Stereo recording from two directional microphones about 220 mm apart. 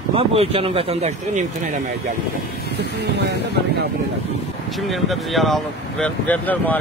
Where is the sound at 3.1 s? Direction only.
50° right (ahead or behind).